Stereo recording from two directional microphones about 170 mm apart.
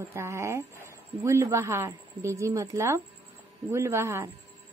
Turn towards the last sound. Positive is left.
turn(degrees=-15)  # may be behind; listen again after turning